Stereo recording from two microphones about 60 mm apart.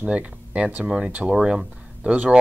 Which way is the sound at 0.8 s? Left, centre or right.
Centre.